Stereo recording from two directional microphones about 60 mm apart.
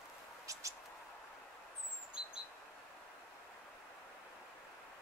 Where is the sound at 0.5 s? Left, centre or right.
Right.